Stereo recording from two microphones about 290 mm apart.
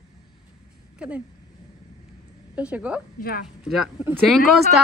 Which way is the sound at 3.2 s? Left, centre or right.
Left.